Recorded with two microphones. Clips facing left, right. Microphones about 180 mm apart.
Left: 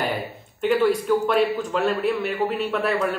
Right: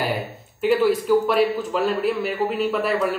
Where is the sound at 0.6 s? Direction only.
5° right (ahead or behind).